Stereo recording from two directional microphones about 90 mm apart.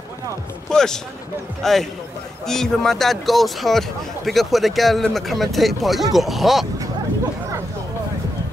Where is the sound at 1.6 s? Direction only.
5° left (ahead or behind).